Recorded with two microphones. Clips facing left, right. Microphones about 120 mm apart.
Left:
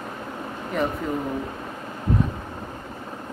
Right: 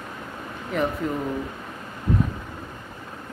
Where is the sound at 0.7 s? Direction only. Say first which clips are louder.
Even; centre (ahead or behind).